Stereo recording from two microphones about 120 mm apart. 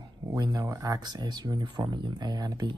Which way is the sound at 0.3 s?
30° right (ahead or behind).